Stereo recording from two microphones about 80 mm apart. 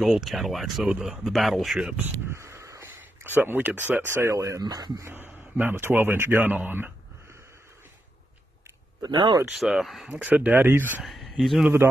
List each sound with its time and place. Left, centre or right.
0.0 s speech: centre
0.8 s speech: centre
1.2 s speech: centre
2.0 s a sound: right
3.4 s speech: right
4.6 s speech: right
5.0 s a man's voice: right
9.0 s speech: right
9.6 s speech: centre
10.0 s speech: centre
11.1 s speech: centre
11.8 s a man's voice: right